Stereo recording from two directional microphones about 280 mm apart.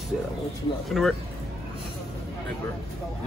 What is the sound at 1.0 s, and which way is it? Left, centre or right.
Speech, centre.